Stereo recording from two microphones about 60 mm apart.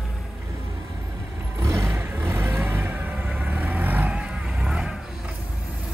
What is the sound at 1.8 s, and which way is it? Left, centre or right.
Vehicle, right.